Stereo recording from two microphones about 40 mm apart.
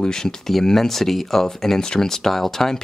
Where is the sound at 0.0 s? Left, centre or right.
Centre.